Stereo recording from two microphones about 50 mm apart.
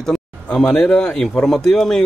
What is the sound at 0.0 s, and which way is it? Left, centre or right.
Speech, centre.